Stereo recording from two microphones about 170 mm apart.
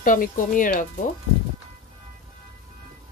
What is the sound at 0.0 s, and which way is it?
Speech, 50° left (ahead or behind).